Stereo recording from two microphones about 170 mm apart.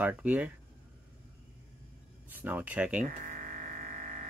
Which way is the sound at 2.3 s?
10° right (ahead or behind).